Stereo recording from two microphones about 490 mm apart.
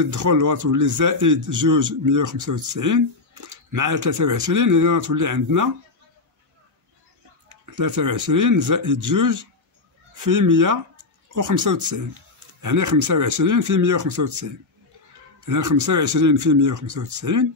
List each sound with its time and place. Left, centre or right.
0.0 s a man's voice: right
7.4 s a man's voice: right